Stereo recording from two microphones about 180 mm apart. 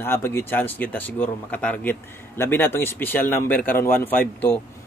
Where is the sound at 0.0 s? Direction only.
15° left (ahead or behind).